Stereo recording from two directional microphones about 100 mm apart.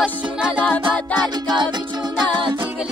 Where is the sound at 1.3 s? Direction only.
45° right (ahead or behind).